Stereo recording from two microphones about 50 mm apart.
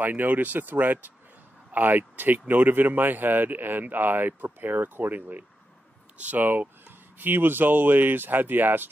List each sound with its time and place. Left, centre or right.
0.0 s speech: right